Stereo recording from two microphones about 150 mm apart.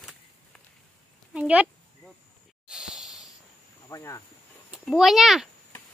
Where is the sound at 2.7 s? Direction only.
5° right (ahead or behind).